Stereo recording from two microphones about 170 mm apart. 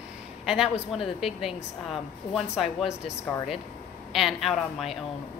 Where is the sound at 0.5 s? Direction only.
5° right (ahead or behind).